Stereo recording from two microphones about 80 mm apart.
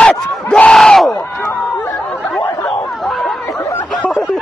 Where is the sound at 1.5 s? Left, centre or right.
Left.